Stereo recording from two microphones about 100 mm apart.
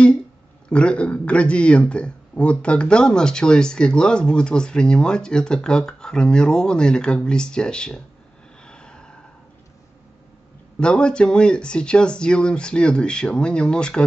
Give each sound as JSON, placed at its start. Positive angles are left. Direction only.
{"t": 0.7, "sound": "speech", "side_deg": 10}
{"t": 8.6, "sound": "a sound", "side_deg": 10}
{"t": 10.8, "sound": "speech", "side_deg": 10}